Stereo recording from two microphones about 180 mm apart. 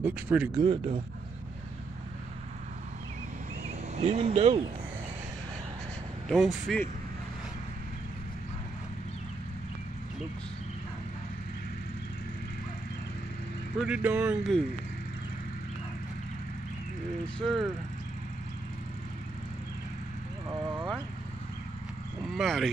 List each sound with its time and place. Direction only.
0.0 s speech: 10° right (ahead or behind)
0.6 s speech: 30° right (ahead or behind)
3.9 s speech: 35° right (ahead or behind)
6.2 s speech: centre (ahead or behind)
13.7 s speech: 5° right (ahead or behind)
17.4 s speech: centre (ahead or behind)
20.4 s vehicle: 15° right (ahead or behind)
22.3 s speech: centre (ahead or behind)